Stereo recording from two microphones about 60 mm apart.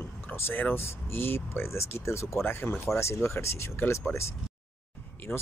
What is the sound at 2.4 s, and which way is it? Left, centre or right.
Speech, left.